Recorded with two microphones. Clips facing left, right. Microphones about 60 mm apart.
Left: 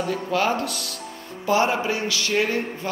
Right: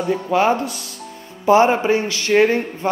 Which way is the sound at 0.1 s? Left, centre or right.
Right.